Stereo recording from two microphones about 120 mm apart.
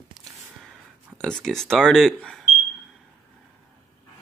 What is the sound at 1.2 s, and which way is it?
Speech, 5° left (ahead or behind).